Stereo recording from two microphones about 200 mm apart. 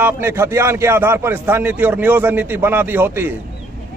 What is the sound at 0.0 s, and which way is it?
A man's voice, 10° right (ahead or behind).